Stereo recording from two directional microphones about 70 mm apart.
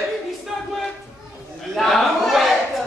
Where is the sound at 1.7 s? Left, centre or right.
Centre.